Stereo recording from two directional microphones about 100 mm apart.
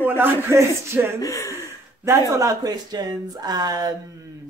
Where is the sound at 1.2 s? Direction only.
35° left (ahead or behind).